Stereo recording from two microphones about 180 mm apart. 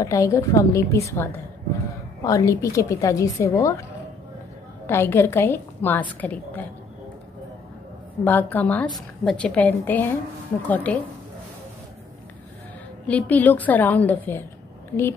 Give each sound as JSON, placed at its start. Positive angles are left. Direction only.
{"t": 0.0, "sound": "a woman's voice", "side_deg": 15}
{"t": 4.8, "sound": "a woman's voice", "side_deg": 15}
{"t": 8.2, "sound": "a woman's voice", "side_deg": 10}
{"t": 13.0, "sound": "a woman's voice", "side_deg": 10}